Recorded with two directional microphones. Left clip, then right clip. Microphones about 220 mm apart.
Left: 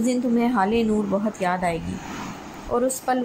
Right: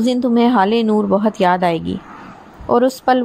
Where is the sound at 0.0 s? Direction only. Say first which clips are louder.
Right 7 dB; 45° right (ahead or behind).